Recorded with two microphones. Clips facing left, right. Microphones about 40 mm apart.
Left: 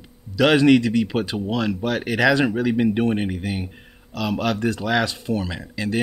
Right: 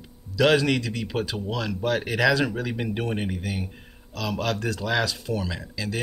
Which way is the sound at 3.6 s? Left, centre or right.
Centre.